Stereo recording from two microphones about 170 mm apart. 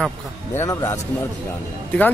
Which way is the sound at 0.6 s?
20° left (ahead or behind).